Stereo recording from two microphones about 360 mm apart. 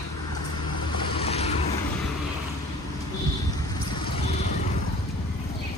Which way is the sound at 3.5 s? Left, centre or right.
Centre.